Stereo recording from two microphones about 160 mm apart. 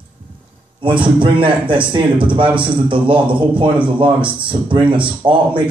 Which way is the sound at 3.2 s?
10° right (ahead or behind).